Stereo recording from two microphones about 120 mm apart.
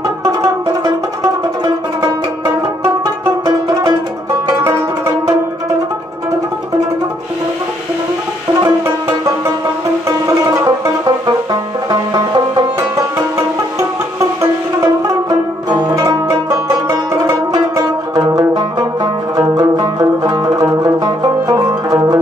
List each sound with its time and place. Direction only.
1.6 s music: 30° right (ahead or behind)
10.0 s music: 25° right (ahead or behind)
11.9 s music: 30° right (ahead or behind)
15.2 s music: 30° right (ahead or behind)